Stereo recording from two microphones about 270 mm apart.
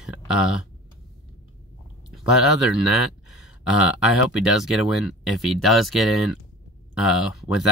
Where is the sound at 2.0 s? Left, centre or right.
Centre.